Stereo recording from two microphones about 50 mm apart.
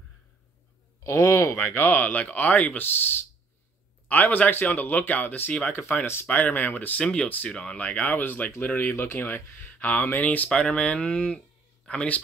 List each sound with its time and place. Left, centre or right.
1.0 s speech: left
1.7 s speech: left
2.8 s speech: left
7.0 s speech: centre
8.1 s speech: left
8.9 s speech: left
10.5 s speech: centre